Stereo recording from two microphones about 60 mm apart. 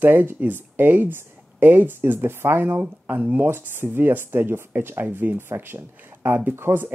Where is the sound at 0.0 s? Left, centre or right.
Right.